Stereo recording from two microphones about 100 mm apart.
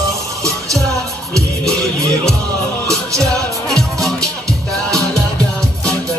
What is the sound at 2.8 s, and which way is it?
Music, 30° right (ahead or behind).